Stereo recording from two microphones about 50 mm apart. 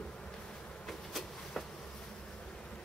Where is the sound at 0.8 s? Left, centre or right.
Centre.